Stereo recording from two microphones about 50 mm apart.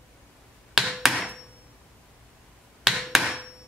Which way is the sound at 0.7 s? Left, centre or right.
Centre.